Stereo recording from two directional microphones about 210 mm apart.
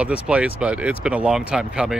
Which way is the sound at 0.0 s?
5° right (ahead or behind).